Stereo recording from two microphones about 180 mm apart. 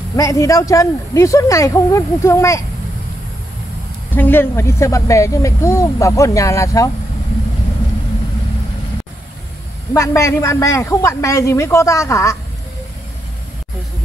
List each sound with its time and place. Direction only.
0.1 s speech: 15° left (ahead or behind)
4.1 s speech: 10° left (ahead or behind)
9.9 s speech: 15° left (ahead or behind)